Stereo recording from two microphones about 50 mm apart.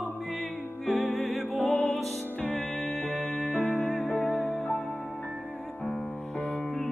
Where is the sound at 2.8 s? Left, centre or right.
Centre.